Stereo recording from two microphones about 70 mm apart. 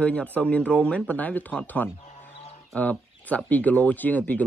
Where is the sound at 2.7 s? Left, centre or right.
Centre.